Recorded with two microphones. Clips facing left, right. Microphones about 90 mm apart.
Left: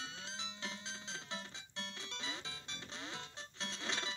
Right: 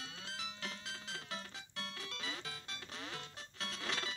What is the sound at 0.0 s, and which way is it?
Music, 25° left (ahead or behind).